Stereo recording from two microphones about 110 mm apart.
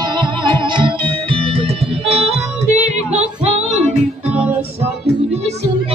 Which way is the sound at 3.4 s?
90° right.